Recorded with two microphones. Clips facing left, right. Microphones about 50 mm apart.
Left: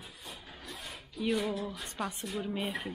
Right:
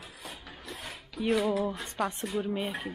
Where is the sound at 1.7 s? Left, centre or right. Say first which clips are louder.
Right 5 dB; right.